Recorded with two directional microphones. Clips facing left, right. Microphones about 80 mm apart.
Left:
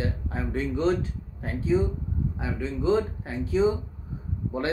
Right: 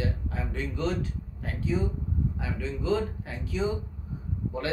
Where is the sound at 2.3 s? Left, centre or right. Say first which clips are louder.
Left 3 dB; left.